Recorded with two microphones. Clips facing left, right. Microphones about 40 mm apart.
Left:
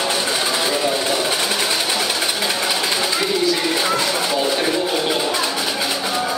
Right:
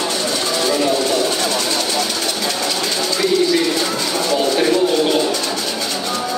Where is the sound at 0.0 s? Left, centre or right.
Centre.